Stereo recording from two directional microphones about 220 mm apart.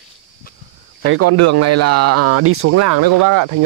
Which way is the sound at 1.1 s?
90° right.